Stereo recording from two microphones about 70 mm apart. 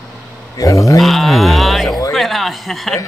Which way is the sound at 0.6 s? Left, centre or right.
Left.